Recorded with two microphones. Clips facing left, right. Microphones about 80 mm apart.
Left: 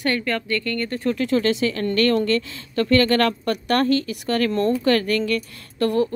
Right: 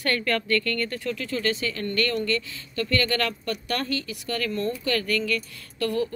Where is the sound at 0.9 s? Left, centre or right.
Left.